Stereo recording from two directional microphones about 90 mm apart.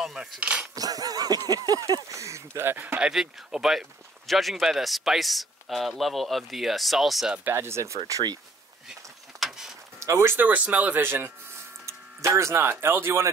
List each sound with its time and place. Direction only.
0.0 s cutlery: centre (ahead or behind)
0.7 s a sound: 45° right (ahead or behind)
1.5 s speech: 45° right (ahead or behind); by 3.0 s 25° right (ahead or behind)
3.0 s a man's voice: 5° right (ahead or behind)
7.5 s speech: 30° right (ahead or behind)
8.1 s a sound: 45° right (ahead or behind)
9.4 s a sound: 5° right (ahead or behind)
9.9 s speech: 30° right (ahead or behind)
12.4 s speech: 30° right (ahead or behind)